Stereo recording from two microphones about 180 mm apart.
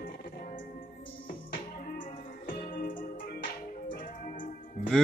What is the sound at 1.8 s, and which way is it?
Music, 50° left (ahead or behind).